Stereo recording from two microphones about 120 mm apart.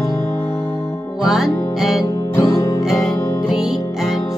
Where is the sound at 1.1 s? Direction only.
5° right (ahead or behind).